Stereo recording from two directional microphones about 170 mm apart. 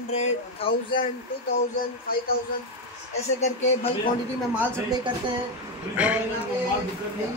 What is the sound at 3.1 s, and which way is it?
Speech, 40° left (ahead or behind).